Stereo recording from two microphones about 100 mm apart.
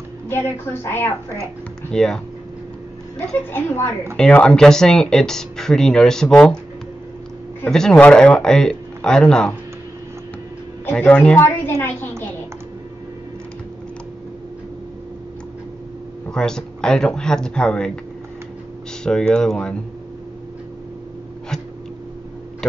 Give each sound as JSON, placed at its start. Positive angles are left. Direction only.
{"t": 0.3, "sound": "a woman's voice", "side_deg": 20}
{"t": 1.9, "sound": "speech", "side_deg": 5}
{"t": 3.5, "sound": "a woman's voice", "side_deg": 25}
{"t": 4.2, "sound": "speech", "side_deg": 10}
{"t": 7.7, "sound": "speech", "side_deg": 5}
{"t": 10.9, "sound": "speech", "side_deg": 15}
{"t": 11.3, "sound": "a woman's voice", "side_deg": 25}
{"t": 16.3, "sound": "speech", "side_deg": 5}
{"t": 19.0, "sound": "speech", "side_deg": 5}